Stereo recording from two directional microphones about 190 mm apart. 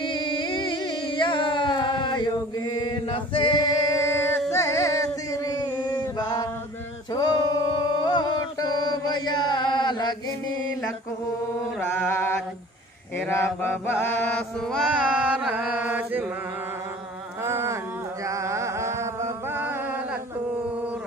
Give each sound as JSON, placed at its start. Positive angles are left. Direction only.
{"t": 0.0, "sound": "music", "side_deg": 25}
{"t": 7.2, "sound": "a sound", "side_deg": 20}
{"t": 8.0, "sound": "chant", "side_deg": 25}
{"t": 12.0, "sound": "chant", "side_deg": 10}
{"t": 14.7, "sound": "chant", "side_deg": -5}
{"t": 17.5, "sound": "a sound", "side_deg": -15}
{"t": 18.2, "sound": "chant", "side_deg": -15}